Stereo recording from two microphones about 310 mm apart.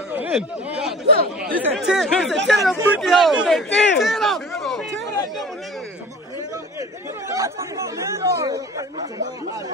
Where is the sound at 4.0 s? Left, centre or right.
Centre.